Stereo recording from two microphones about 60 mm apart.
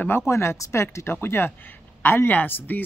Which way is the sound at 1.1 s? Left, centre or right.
Left.